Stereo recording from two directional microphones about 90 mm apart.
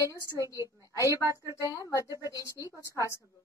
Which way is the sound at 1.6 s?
40° left (ahead or behind).